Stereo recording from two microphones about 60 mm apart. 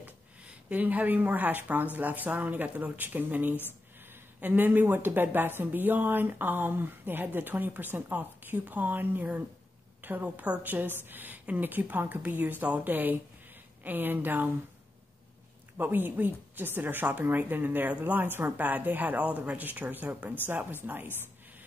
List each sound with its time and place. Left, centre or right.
0.0 s a woman's voice: right
15.8 s a woman's voice: right